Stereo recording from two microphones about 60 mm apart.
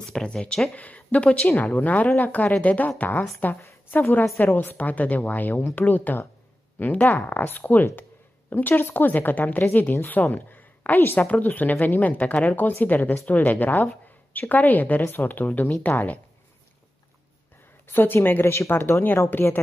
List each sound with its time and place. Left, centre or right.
0.1 s a woman's voice: centre; by 15.7 s left
17.8 s speech: left
19.3 s speech: left